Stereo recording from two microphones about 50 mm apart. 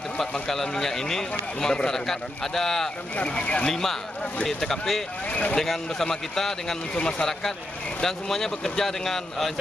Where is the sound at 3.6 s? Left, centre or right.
Centre.